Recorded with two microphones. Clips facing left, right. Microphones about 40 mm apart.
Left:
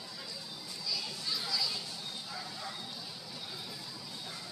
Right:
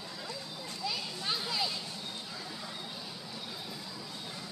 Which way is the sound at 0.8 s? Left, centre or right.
Right.